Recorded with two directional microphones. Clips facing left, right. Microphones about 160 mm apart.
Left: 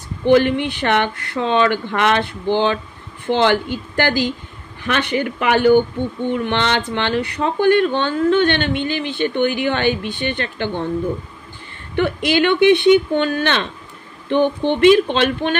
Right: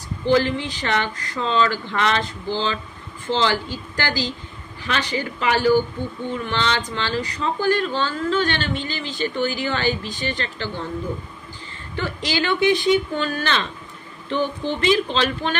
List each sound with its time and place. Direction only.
0.2 s speech: 60° left (ahead or behind)
11.9 s speech: 60° left (ahead or behind)